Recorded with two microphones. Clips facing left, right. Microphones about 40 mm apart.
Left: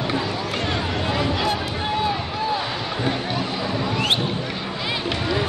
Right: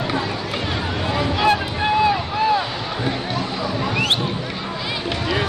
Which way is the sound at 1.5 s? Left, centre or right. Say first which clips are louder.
Right 5 dB; right.